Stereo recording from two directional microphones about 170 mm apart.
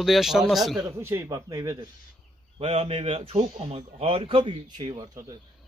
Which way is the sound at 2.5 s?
35° right (ahead or behind).